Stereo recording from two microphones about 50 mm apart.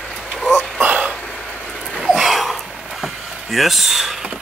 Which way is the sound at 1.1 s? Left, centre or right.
Left.